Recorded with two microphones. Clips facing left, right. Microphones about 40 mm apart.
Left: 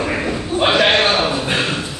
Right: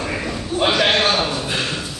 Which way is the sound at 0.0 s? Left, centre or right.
Centre.